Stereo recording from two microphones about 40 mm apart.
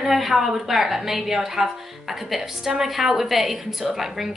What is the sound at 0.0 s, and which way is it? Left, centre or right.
A woman's voice, centre.